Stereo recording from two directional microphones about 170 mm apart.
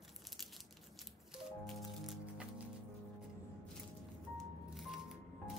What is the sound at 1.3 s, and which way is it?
Music, centre (ahead or behind).